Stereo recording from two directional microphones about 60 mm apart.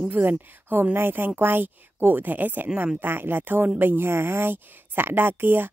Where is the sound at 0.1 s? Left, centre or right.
Right.